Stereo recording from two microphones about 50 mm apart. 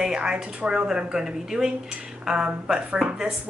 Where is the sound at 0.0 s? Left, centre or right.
Centre.